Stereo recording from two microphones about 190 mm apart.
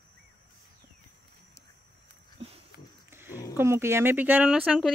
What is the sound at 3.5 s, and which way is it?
Speech, 15° right (ahead or behind).